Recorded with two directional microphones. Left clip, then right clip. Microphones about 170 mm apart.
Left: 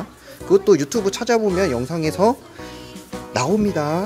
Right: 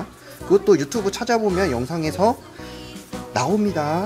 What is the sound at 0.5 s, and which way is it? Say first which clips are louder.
Speech: left 1 dB; 35° left (ahead or behind).